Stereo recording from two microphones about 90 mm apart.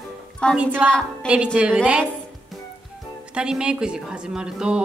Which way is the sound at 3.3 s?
10° right (ahead or behind).